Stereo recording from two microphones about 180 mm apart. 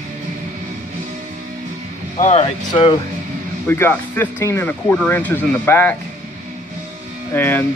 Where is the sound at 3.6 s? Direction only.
15° left (ahead or behind).